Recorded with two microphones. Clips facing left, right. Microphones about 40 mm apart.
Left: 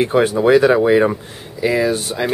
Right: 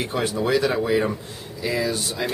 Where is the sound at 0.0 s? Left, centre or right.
Left.